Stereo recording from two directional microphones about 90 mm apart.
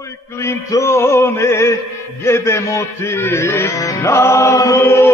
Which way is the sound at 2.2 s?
30° left (ahead or behind).